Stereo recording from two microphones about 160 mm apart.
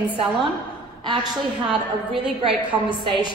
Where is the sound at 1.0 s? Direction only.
30° right (ahead or behind).